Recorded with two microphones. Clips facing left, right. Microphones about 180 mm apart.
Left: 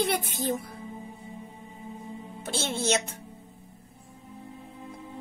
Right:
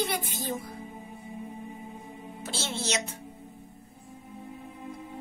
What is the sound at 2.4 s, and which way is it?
Music, 55° left (ahead or behind).